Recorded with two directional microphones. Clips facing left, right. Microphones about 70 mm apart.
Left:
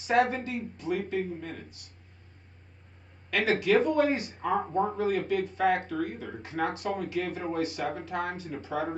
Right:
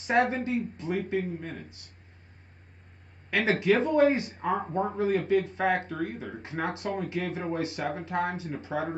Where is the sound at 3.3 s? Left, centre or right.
Right.